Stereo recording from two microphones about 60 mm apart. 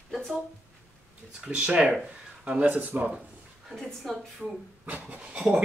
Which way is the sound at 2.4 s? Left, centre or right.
Right.